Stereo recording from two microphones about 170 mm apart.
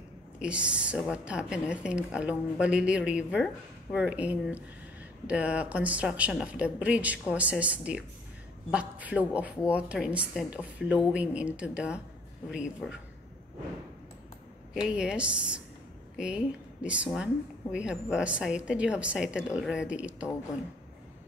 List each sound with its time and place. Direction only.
0.4 s a woman's voice: 5° right (ahead or behind)
14.7 s a woman's voice: 5° right (ahead or behind)